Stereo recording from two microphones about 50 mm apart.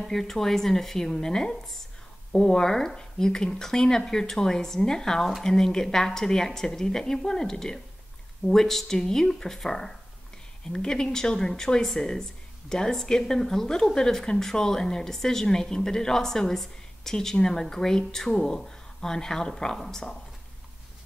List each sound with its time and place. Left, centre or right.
0.0 s speech: centre